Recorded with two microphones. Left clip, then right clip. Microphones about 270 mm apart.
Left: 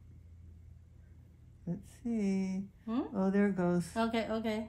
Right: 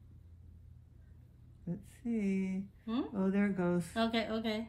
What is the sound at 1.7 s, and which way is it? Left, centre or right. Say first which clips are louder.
Speech: left 1 dB; centre.